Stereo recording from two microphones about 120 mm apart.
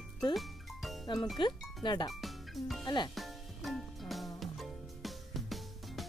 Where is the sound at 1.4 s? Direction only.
40° left (ahead or behind).